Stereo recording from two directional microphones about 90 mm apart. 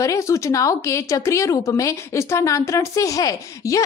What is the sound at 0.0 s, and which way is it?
Speech, 35° left (ahead or behind).